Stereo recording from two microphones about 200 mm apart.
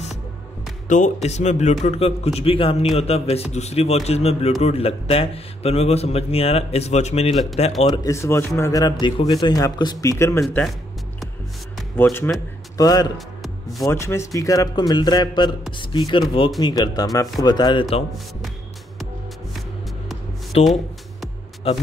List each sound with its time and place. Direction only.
0.8 s a man's voice: 40° left (ahead or behind)
7.9 s a man's voice: 15° left (ahead or behind)
10.4 s music: centre (ahead or behind)
12.0 s a man's voice: 10° left (ahead or behind); by 18.0 s 25° left (ahead or behind)
20.5 s a man's voice: 30° left (ahead or behind)